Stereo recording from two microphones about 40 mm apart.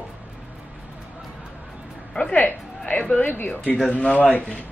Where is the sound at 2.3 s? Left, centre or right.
Left.